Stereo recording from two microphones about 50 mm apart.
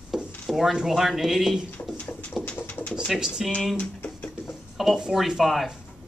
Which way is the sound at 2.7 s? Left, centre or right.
Left.